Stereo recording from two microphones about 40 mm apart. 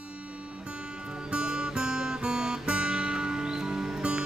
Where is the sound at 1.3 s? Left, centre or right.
Right.